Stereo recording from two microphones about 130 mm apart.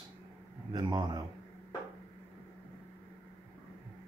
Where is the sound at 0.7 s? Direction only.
35° right (ahead or behind).